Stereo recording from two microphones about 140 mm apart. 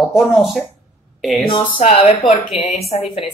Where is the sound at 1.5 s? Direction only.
45° left (ahead or behind).